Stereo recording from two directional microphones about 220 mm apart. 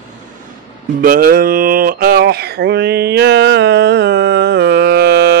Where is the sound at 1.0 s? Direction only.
40° right (ahead or behind).